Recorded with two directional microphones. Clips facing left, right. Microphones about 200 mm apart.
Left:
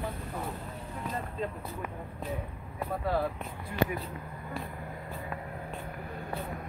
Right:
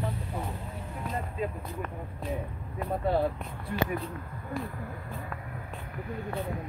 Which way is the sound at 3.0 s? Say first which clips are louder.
Right 3 dB; 25° right (ahead or behind).